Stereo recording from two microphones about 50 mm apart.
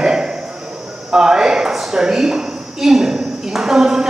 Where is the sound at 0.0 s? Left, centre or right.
Centre.